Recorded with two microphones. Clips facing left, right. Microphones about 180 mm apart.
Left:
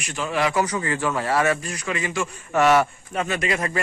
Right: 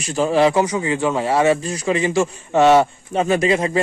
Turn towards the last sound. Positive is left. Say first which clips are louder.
# right 8 dB
turn(degrees=-25)  # may be behind; listen again after turning